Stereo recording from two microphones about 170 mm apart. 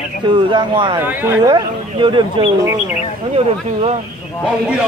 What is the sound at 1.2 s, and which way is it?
Speech, 15° right (ahead or behind).